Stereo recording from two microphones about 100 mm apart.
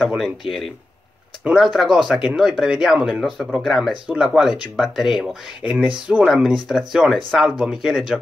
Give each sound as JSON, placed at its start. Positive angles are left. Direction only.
{"t": 0.2, "sound": "speech", "side_deg": 0}